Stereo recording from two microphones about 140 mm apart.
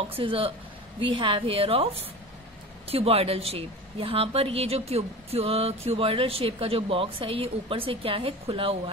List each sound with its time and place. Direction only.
0.2 s a woman's voice: 40° right (ahead or behind)